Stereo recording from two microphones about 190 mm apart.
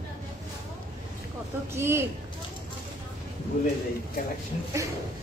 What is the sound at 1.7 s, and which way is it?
Speech, 15° right (ahead or behind).